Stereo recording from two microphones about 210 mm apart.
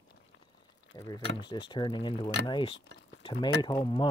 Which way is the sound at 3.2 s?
25° left (ahead or behind).